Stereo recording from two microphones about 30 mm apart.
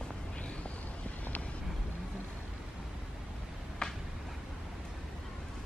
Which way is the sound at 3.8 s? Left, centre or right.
Left.